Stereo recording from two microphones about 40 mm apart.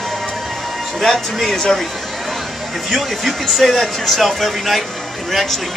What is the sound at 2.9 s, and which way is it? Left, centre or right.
Speech, centre.